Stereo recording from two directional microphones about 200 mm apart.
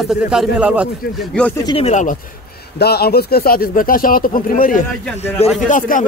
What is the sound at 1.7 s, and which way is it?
Speech, 30° left (ahead or behind).